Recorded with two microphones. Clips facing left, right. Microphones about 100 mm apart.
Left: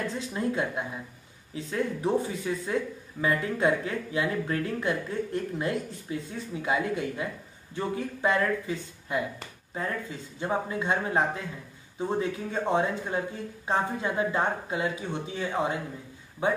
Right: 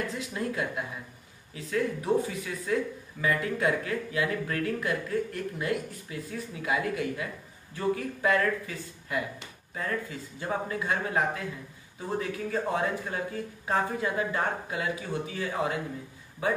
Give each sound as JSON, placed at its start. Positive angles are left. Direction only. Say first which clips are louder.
{"t": 0.1, "sound": "speech", "louder": "left 3 dB", "side_deg": 30}
{"t": 10.4, "sound": "speech", "louder": "left 2 dB", "side_deg": 25}